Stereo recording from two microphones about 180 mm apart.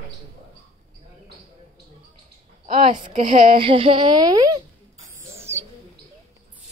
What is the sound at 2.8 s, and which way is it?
Speech, 40° right (ahead or behind).